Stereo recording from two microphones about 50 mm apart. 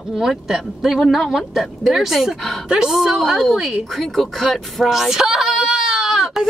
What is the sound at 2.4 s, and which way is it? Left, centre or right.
Speech, centre.